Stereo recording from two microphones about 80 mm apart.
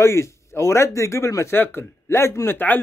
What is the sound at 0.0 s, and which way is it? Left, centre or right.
A man's voice, left.